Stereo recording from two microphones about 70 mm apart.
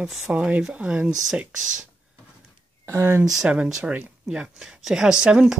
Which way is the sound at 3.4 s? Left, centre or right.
Centre.